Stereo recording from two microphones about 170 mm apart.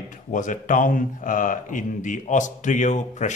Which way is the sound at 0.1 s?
50° left (ahead or behind).